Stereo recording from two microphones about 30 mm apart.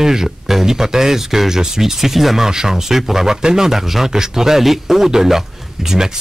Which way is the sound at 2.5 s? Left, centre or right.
Right.